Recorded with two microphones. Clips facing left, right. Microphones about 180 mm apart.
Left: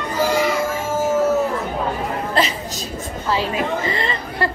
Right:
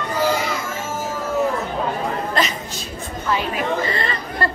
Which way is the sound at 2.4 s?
30° left (ahead or behind).